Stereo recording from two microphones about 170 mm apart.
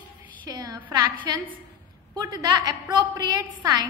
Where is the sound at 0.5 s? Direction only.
20° right (ahead or behind).